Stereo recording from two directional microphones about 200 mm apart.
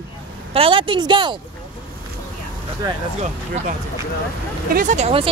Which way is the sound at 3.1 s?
35° right (ahead or behind).